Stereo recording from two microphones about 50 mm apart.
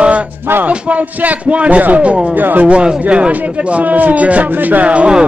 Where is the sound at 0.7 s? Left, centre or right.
Right.